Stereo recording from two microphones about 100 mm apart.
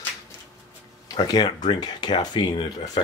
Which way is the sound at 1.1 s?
45° left (ahead or behind).